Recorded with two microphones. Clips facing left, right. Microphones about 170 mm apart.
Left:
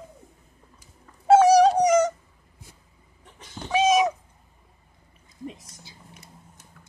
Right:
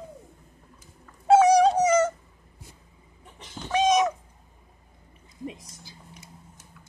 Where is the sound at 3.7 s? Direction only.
5° left (ahead or behind).